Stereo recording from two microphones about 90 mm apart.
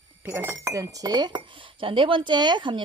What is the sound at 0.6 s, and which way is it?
Speech, 40° right (ahead or behind).